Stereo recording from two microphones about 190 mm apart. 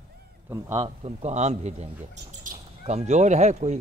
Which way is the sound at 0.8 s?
35° right (ahead or behind).